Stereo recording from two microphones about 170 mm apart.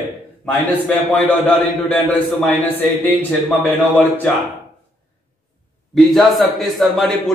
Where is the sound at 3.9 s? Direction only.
10° left (ahead or behind).